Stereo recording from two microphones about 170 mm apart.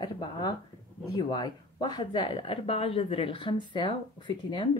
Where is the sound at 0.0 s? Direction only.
25° left (ahead or behind).